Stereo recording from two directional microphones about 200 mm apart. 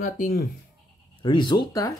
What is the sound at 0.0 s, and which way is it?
Speech, 45° left (ahead or behind).